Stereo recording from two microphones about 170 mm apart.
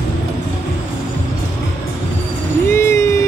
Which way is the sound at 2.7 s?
15° left (ahead or behind).